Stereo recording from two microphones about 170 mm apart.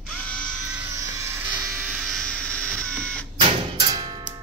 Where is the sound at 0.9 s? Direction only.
20° right (ahead or behind).